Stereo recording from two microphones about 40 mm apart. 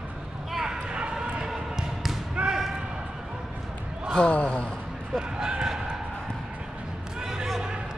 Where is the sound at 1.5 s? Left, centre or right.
Centre.